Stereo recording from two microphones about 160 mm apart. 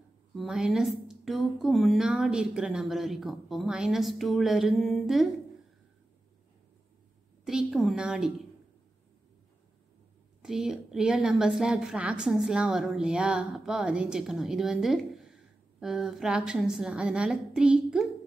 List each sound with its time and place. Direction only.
0.4 s a woman's voice: 5° right (ahead or behind)
7.4 s a woman's voice: centre (ahead or behind)
10.4 s a woman's voice: 5° right (ahead or behind)